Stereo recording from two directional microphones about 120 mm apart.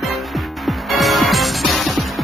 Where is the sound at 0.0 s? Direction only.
Centre (ahead or behind).